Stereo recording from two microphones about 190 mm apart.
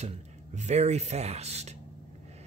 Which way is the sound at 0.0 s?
35° right (ahead or behind).